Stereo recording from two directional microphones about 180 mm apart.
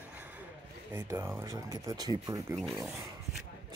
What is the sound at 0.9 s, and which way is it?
Speech, 15° right (ahead or behind).